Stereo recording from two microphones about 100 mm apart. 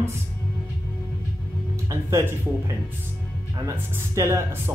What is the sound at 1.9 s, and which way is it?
Speech, 30° right (ahead or behind).